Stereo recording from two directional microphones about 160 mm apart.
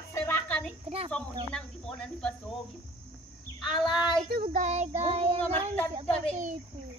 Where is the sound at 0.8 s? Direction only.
40° right (ahead or behind).